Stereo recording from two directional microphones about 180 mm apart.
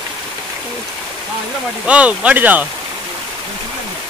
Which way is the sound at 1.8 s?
5° right (ahead or behind).